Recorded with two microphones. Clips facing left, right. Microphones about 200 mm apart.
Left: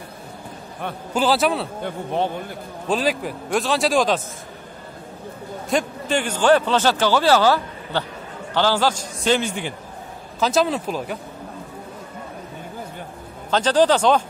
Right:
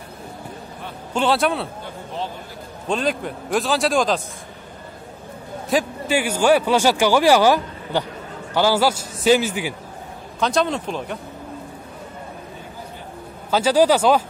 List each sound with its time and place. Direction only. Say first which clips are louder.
1.1 s speech: even; centre (ahead or behind)
1.8 s a man's voice: left 6 dB; 60° left (ahead or behind)
2.9 s speech: left 1 dB; 5° left (ahead or behind)
5.7 s a man's voice: right 1 dB; 5° right (ahead or behind)
13.5 s a man's voice: right 1 dB; 10° right (ahead or behind)